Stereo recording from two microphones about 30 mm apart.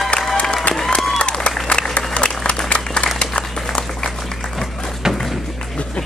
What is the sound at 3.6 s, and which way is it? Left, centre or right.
Applause, left.